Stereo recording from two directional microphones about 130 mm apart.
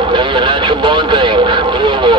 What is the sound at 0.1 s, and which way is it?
Radio, 40° right (ahead or behind).